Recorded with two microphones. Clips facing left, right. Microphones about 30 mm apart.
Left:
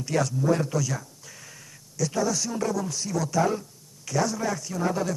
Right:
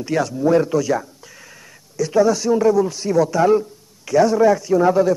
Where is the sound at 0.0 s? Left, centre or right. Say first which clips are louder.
Right 6 dB; centre.